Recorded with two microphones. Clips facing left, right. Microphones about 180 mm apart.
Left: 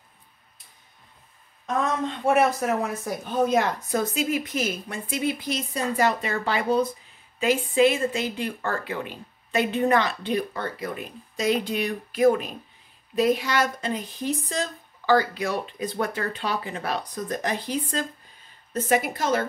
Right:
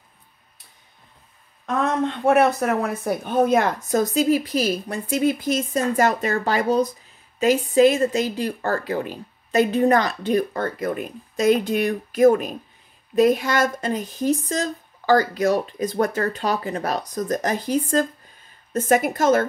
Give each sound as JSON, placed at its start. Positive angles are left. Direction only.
{"t": 1.8, "sound": "speech", "side_deg": -65}